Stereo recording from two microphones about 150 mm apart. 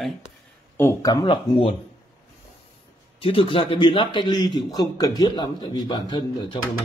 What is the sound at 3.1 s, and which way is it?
A man's voice, 35° left (ahead or behind).